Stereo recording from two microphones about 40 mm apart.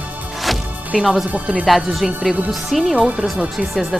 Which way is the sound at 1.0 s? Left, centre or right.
Centre.